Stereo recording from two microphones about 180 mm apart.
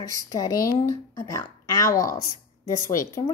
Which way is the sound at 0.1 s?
20° left (ahead or behind).